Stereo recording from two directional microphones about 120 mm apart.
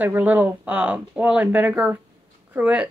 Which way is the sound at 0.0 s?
15° right (ahead or behind).